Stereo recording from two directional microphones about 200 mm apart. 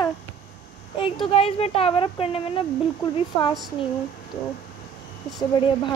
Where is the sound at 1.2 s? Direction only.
30° left (ahead or behind).